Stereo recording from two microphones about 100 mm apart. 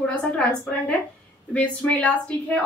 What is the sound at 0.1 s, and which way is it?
A woman's voice, 15° left (ahead or behind).